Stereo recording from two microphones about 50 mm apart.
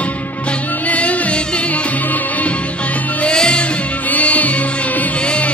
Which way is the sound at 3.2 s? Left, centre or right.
Centre.